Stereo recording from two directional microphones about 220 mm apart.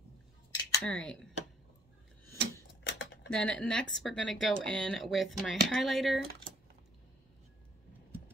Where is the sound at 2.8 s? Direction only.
50° left (ahead or behind).